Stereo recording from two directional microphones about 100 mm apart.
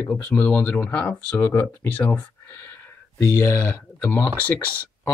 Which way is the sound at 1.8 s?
15° left (ahead or behind).